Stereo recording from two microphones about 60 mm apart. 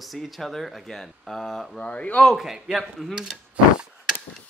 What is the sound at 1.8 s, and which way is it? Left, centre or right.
Speech, left.